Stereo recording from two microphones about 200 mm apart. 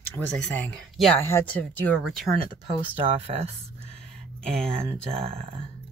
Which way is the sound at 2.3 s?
25° right (ahead or behind).